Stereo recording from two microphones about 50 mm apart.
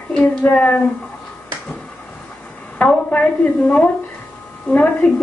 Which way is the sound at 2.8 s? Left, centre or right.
Left.